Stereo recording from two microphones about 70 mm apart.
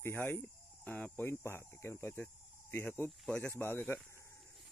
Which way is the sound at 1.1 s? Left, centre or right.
Left.